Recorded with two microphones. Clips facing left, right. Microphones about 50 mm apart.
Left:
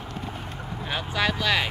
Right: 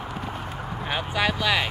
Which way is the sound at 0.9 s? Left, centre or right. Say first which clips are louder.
Right 1 dB; centre.